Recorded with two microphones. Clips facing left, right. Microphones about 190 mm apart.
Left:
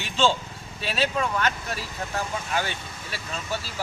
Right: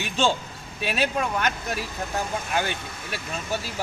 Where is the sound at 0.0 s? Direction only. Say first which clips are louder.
Even; 15° right (ahead or behind).